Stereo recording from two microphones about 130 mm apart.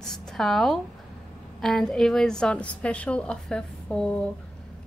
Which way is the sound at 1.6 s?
5° left (ahead or behind).